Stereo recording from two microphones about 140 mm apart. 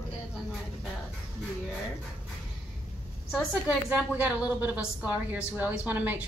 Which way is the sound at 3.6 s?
10° right (ahead or behind).